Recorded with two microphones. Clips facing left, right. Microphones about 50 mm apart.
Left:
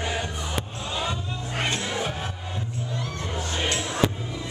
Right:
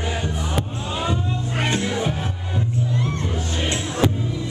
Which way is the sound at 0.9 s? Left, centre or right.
Centre.